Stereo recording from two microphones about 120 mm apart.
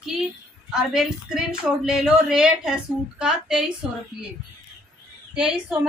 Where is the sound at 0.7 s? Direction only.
5° right (ahead or behind).